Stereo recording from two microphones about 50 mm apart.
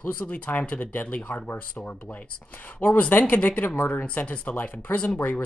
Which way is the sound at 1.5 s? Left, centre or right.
Left.